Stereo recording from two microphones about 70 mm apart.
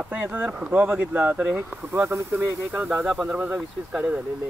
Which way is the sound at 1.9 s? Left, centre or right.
Right.